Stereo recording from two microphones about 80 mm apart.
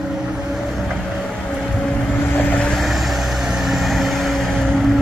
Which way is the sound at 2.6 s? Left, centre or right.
Centre.